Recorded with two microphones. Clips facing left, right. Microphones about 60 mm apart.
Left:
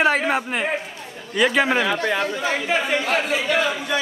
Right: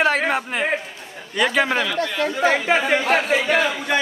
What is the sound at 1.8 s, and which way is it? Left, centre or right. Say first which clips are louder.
Speech: left 1 dB; left.